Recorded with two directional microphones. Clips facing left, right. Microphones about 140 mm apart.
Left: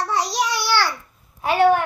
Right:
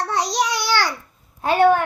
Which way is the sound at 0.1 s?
20° right (ahead or behind).